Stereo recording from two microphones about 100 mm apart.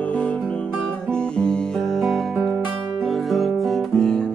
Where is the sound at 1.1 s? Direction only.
10° left (ahead or behind).